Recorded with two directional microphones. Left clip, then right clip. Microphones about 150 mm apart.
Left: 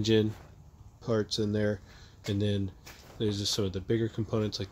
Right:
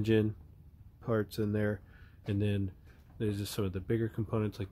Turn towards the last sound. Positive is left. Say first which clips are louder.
# left 3 dB
turn(degrees=0)  # may be behind; listen again after turning